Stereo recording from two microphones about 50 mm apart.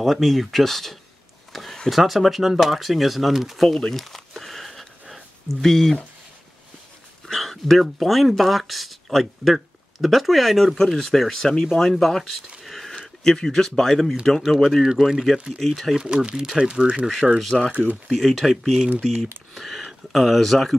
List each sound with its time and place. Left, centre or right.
0.0 s speech: centre
1.5 s a sound: centre
1.9 s speech: centre
3.6 s a sound: centre
7.2 s speech: centre
12.6 s a sound: centre
13.2 s speech: centre
14.8 s speech: centre
15.6 s speech: centre
16.0 s speech: centre
17.6 s speech: right
18.1 s speech: centre